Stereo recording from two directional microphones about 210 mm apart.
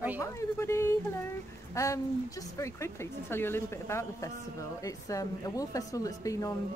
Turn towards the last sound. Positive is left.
turn(degrees=15)  # may be behind; listen again after turning